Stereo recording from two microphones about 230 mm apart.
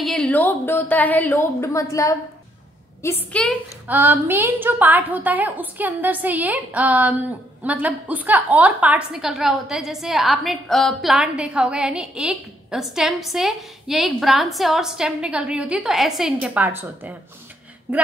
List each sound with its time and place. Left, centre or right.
0.0 s a woman's voice: centre
3.9 s a woman's voice: centre